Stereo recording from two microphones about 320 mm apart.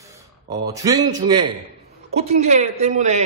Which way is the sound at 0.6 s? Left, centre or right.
Centre.